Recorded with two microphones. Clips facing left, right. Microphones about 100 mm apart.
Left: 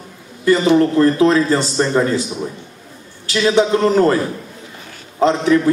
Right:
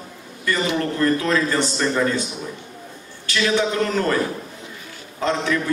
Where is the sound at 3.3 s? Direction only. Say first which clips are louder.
Left 6 dB; 30° left (ahead or behind).